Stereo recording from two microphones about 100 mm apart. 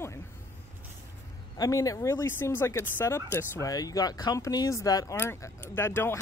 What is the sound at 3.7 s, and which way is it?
Speech, 40° left (ahead or behind).